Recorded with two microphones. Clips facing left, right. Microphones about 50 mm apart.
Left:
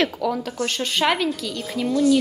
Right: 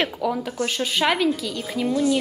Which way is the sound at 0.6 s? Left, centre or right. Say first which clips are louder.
Left 1 dB; centre.